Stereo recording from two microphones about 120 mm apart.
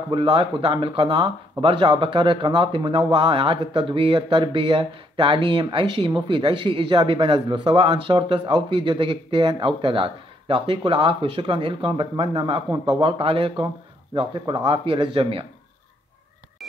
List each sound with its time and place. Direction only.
0.1 s speech: 45° right (ahead or behind)